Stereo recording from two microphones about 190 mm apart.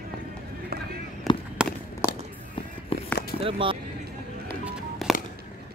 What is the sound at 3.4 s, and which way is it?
Speech, 30° right (ahead or behind).